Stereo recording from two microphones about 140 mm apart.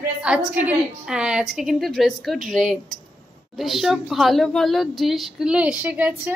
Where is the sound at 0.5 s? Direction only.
10° right (ahead or behind).